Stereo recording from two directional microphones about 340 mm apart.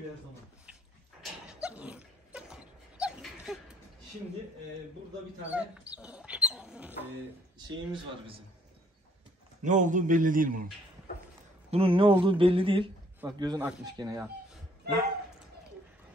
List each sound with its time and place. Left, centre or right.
1.5 s a sound: centre
5.5 s speech: centre
7.5 s speech: centre
9.6 s a man's voice: right
11.7 s speech: centre